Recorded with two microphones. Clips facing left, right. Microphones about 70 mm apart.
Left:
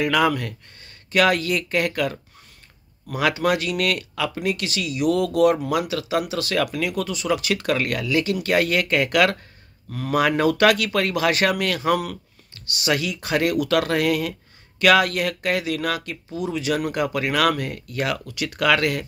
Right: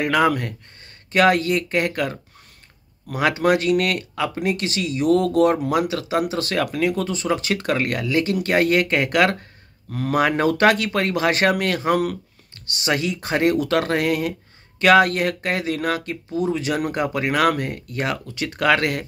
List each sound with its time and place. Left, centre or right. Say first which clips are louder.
0.0 s speech: right 1 dB; right